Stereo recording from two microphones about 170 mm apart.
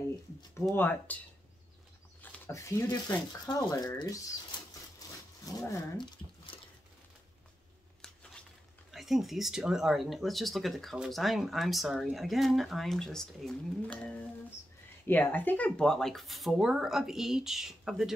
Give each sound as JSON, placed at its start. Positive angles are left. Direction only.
{"t": 0.6, "sound": "speech", "side_deg": 10}
{"t": 2.3, "sound": "speech", "side_deg": 15}
{"t": 8.0, "sound": "a sound", "side_deg": 5}
{"t": 8.9, "sound": "speech", "side_deg": 0}